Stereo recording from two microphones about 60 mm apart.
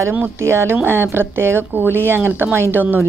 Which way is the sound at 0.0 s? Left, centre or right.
Right.